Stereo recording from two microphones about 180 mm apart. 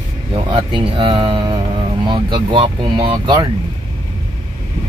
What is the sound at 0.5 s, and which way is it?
Speech, 25° right (ahead or behind).